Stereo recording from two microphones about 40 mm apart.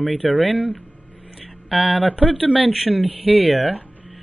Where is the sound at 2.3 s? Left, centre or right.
Right.